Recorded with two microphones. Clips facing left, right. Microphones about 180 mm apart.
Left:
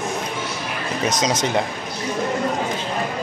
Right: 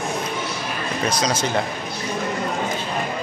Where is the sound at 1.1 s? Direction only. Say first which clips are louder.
Left 2 dB; 20° left (ahead or behind).